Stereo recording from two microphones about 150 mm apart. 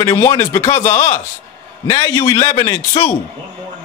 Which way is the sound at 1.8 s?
25° left (ahead or behind).